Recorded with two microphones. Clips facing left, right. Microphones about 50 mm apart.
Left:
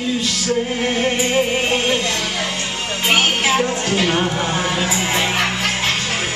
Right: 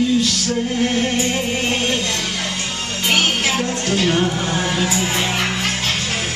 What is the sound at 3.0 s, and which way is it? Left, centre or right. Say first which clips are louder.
Music: left 2 dB; centre.